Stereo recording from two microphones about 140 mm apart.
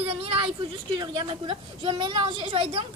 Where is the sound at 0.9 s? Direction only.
30° right (ahead or behind).